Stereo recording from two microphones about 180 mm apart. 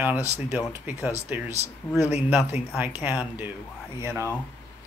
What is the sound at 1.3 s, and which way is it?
Speech, 10° right (ahead or behind).